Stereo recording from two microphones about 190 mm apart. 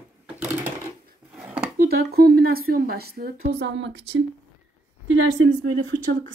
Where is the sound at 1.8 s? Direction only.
55° right (ahead or behind).